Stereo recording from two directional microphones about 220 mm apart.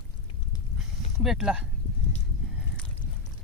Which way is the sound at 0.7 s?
Centre (ahead or behind).